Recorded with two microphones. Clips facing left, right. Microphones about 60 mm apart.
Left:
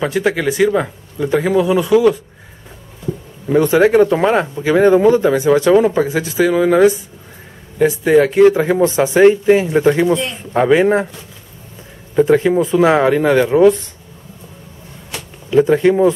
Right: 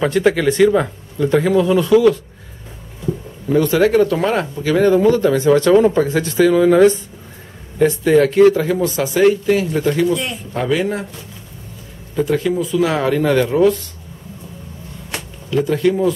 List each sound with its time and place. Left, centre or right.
0.0 s speech: centre
3.5 s speech: left
12.2 s speech: left
15.5 s speech: left